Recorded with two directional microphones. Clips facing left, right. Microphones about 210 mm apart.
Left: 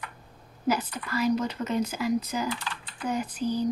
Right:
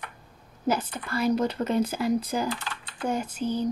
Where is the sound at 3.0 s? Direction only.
25° right (ahead or behind).